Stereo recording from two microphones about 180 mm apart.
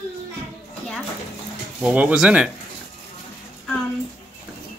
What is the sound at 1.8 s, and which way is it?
Speech, 5° right (ahead or behind).